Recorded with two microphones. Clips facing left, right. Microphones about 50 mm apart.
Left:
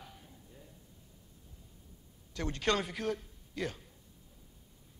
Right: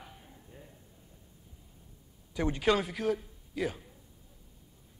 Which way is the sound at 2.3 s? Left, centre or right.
Centre.